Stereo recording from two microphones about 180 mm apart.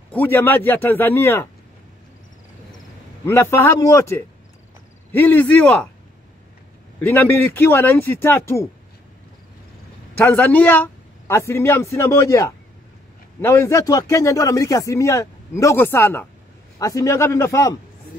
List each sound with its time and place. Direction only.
0.1 s a man's voice: 10° left (ahead or behind)
3.3 s a man's voice: 15° left (ahead or behind)
7.0 s a man's voice: 10° left (ahead or behind)
10.1 s a man's voice: 10° left (ahead or behind)